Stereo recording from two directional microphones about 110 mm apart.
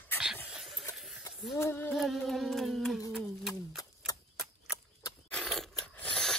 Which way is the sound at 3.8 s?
35° left (ahead or behind).